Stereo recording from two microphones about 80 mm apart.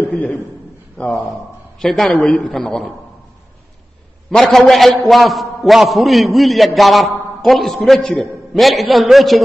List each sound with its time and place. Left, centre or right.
0.1 s a man's voice: centre
4.3 s a man's voice: centre